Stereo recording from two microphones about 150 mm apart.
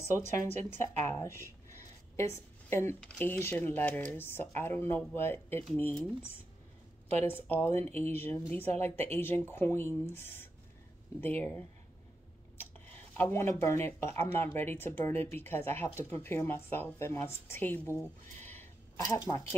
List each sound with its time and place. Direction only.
0.1 s speech: 50° right (ahead or behind)
1.0 s speech: 15° left (ahead or behind)
7.2 s speech: 15° left (ahead or behind)
13.2 s speech: 15° left (ahead or behind)